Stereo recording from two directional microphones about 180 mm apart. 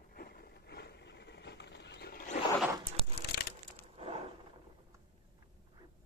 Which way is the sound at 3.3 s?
55° left (ahead or behind).